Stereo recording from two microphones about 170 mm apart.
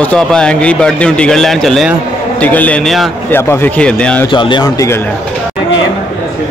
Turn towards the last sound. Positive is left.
turn(degrees=20)  # may be behind; listen again after turning